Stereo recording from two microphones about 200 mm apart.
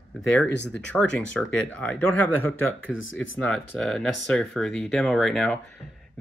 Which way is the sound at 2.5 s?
75° left (ahead or behind).